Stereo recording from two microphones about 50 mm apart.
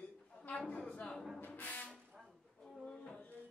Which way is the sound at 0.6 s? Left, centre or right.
Centre.